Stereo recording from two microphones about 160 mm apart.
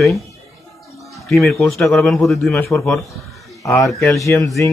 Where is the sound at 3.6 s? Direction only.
20° left (ahead or behind).